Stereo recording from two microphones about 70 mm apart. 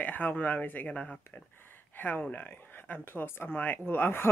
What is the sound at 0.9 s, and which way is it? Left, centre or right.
Speech, centre.